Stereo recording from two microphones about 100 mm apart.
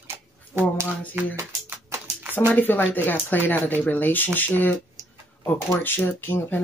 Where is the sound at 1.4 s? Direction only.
25° right (ahead or behind).